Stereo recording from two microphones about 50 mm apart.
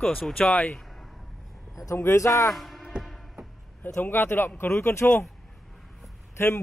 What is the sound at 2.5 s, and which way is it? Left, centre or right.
Music, centre.